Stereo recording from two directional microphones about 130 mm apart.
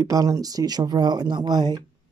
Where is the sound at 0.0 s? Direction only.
25° right (ahead or behind).